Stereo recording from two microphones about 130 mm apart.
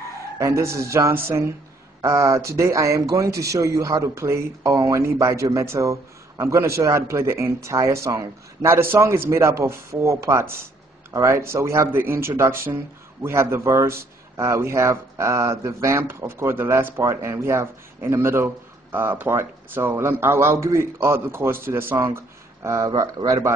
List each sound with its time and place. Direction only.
0.4 s a man's voice: 20° right (ahead or behind)